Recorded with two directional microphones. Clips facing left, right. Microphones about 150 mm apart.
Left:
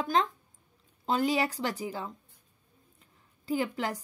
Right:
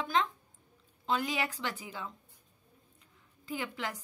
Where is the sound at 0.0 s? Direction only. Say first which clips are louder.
Left 3 dB; 40° left (ahead or behind).